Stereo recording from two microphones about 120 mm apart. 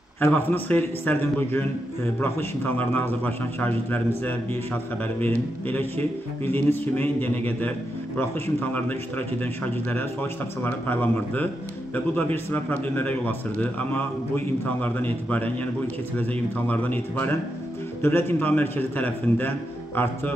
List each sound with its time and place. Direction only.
0.2 s a man's voice: 15° left (ahead or behind)